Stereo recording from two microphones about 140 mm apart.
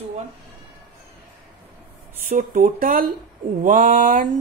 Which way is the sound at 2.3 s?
75° right (ahead or behind).